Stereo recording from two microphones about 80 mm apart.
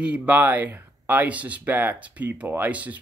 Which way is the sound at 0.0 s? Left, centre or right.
Centre.